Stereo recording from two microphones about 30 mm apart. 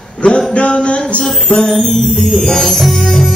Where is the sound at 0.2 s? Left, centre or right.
Left.